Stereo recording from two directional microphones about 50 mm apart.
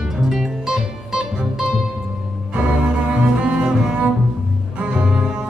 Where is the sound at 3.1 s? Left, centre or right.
Centre.